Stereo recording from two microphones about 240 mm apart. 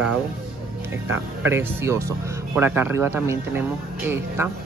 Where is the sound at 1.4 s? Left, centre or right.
Centre.